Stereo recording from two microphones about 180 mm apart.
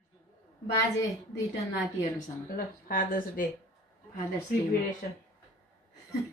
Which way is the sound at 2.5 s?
50° left (ahead or behind).